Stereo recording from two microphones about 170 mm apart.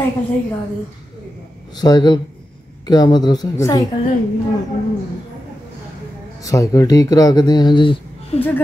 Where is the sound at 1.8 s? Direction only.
25° left (ahead or behind).